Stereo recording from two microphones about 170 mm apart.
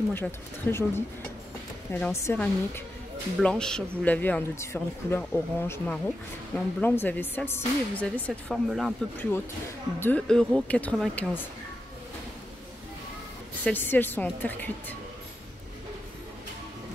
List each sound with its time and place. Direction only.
0.1 s speech: 15° left (ahead or behind)
8.3 s speech: centre (ahead or behind)
9.9 s speech: 10° left (ahead or behind)
13.7 s speech: 10° left (ahead or behind)